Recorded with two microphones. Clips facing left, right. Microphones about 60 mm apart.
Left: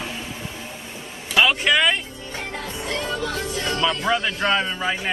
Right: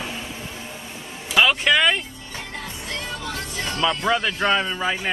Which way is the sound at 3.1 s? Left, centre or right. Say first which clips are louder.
Left 4 dB; left.